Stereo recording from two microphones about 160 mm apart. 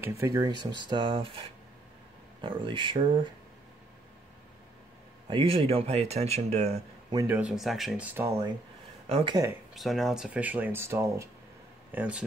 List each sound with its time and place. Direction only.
0.0 s speech: 20° right (ahead or behind)
0.8 s speech: 30° right (ahead or behind)
5.3 s speech: 35° right (ahead or behind)
7.2 s speech: 5° right (ahead or behind)
9.1 s speech: 30° right (ahead or behind)
9.8 s speech: centre (ahead or behind)